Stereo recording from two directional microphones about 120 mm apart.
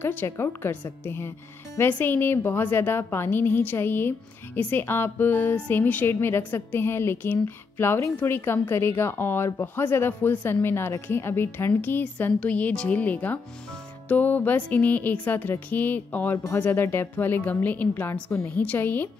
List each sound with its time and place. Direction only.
0.0 s a woman's voice: 20° left (ahead or behind)